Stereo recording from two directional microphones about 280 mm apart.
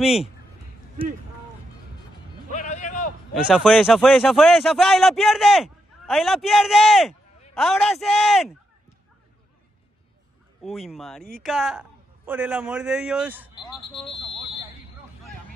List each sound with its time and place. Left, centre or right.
0.0 s a man's voice: centre
2.5 s music: left
3.3 s a man's voice: centre
10.6 s a man's voice: centre